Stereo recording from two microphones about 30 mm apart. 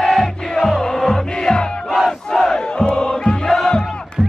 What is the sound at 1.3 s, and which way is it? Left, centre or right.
Music, left.